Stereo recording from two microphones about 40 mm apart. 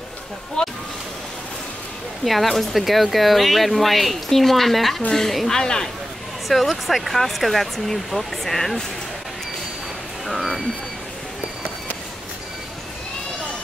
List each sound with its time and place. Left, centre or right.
0.6 s vehicle: centre
2.2 s speech: centre
6.5 s speech: centre
10.2 s vehicle: centre